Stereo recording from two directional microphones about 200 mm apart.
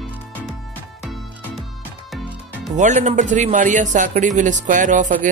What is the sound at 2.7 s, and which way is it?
Speech, 35° right (ahead or behind).